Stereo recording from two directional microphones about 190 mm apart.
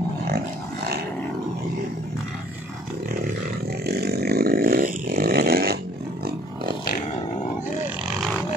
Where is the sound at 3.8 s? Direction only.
60° right (ahead or behind).